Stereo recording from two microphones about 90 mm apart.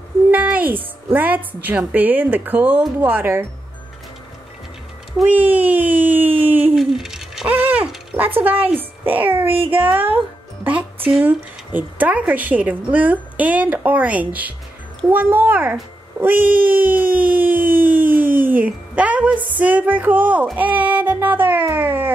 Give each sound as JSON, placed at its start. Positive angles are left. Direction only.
{"t": 0.3, "sound": "a woman's voice", "side_deg": -20}
{"t": 5.3, "sound": "speech", "side_deg": -20}
{"t": 6.8, "sound": "owl", "side_deg": -5}
{"t": 7.4, "sound": "a sound", "side_deg": -15}
{"t": 8.4, "sound": "a woman's voice", "side_deg": -20}